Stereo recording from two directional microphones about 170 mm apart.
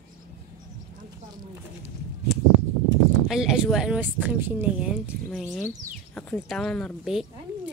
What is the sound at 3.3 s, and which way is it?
Speech, 5° right (ahead or behind).